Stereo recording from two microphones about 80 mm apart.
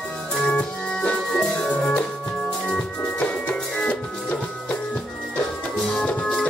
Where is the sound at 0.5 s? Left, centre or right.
Centre.